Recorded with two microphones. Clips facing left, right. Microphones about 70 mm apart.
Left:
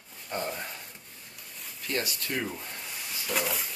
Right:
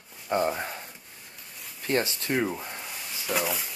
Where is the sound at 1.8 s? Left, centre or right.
Right.